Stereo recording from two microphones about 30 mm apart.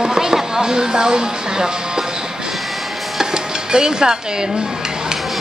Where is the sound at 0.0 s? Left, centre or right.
Centre.